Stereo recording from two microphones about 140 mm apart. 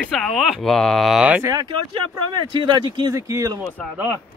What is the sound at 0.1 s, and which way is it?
Speech, centre (ahead or behind).